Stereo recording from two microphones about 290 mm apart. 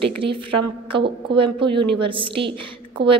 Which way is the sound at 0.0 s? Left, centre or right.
Centre.